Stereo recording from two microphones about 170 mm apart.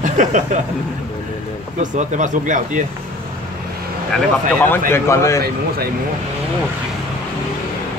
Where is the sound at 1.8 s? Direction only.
45° right (ahead or behind).